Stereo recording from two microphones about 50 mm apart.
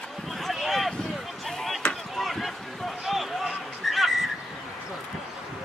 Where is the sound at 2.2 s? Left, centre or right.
Centre.